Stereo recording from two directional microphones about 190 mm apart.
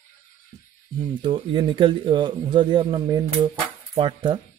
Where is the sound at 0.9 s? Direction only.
25° right (ahead or behind).